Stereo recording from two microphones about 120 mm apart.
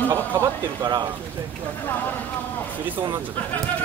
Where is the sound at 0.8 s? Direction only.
35° right (ahead or behind).